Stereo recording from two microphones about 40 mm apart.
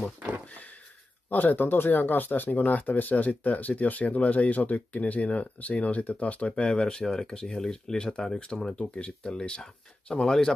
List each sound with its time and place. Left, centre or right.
1.3 s speech: left
6.5 s speech: left
10.2 s speech: centre